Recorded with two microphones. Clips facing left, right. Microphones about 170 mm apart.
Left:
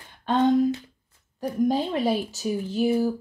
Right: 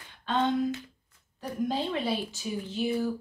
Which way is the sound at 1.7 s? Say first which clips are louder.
Left 4 dB; 45° left (ahead or behind).